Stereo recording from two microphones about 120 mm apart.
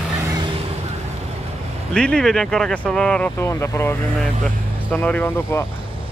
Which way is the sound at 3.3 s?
20° left (ahead or behind).